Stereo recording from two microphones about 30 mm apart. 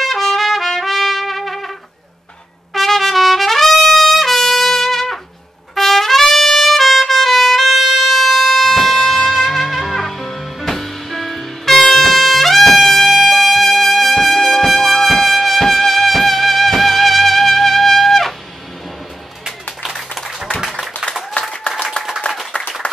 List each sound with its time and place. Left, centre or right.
0.0 s trumpet: centre
2.7 s trumpet: centre
19.8 s applause: centre
21.7 s chopping: left